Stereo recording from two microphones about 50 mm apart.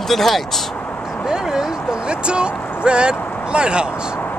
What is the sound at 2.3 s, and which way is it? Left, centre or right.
Speech, right.